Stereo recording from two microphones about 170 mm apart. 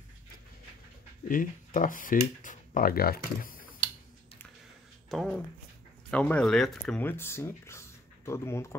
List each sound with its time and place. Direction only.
1.3 s speech: 50° left (ahead or behind)
5.1 s speech: centre (ahead or behind)